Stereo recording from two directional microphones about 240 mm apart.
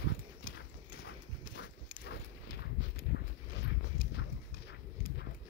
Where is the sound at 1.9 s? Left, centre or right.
Left.